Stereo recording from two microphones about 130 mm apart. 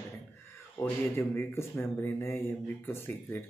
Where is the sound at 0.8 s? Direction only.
20° left (ahead or behind).